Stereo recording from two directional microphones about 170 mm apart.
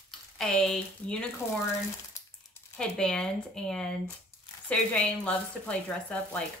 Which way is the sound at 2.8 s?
5° left (ahead or behind).